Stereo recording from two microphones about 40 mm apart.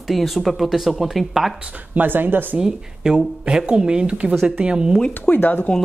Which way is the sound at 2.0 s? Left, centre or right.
Right.